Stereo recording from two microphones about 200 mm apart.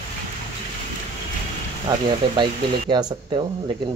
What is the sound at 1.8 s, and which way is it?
Speech, 20° right (ahead or behind).